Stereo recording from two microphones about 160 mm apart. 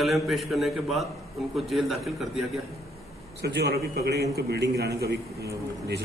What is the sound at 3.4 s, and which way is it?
A man's voice, 90° right.